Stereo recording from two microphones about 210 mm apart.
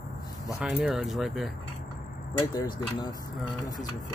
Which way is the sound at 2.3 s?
20° left (ahead or behind).